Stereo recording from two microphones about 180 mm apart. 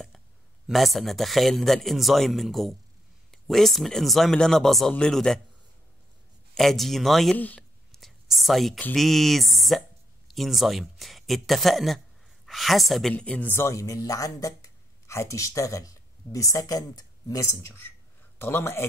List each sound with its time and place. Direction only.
0.7 s a man's voice: centre (ahead or behind)
6.5 s a woman's voice: centre (ahead or behind)